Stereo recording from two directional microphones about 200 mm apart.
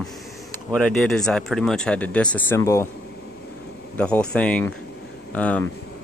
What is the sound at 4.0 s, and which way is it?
Speech, 5° left (ahead or behind).